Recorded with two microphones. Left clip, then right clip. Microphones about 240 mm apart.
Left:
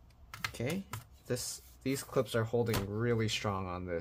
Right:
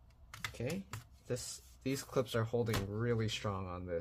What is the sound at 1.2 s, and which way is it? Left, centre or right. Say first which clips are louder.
Speech: left 4 dB; centre.